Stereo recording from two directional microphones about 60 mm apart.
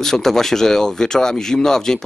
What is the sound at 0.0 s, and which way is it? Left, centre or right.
Speech, centre.